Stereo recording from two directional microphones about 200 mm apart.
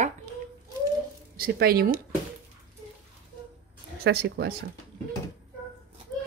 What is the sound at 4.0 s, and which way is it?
Speech, 55° right (ahead or behind).